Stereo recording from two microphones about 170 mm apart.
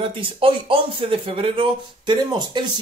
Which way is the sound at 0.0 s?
30° right (ahead or behind).